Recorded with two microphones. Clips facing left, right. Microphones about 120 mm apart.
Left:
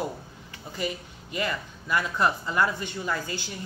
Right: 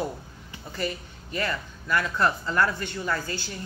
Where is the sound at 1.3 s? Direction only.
15° left (ahead or behind).